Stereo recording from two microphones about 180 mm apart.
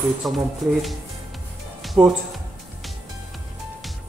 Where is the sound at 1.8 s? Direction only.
5° right (ahead or behind).